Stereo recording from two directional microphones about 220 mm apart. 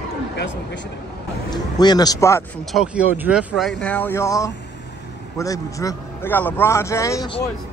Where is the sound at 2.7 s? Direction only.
5° right (ahead or behind).